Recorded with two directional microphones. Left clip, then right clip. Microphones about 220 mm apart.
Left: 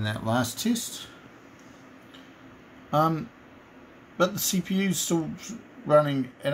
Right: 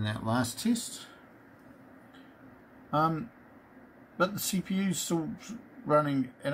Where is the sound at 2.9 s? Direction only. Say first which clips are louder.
Left 4 dB; centre (ahead or behind).